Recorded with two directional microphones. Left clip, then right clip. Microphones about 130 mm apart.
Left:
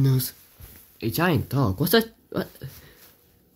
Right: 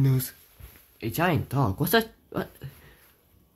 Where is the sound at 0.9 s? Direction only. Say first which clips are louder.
Left 2 dB; 30° left (ahead or behind).